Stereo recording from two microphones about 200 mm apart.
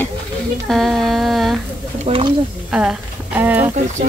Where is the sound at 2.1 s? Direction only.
25° right (ahead or behind).